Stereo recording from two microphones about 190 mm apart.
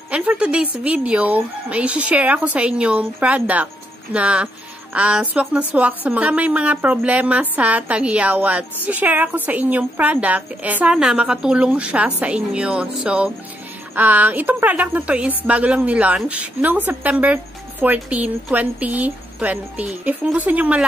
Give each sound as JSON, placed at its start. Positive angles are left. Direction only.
{"t": 0.1, "sound": "a woman's voice", "side_deg": -5}